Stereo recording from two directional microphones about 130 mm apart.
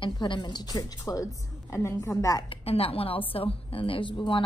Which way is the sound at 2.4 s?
50° left (ahead or behind).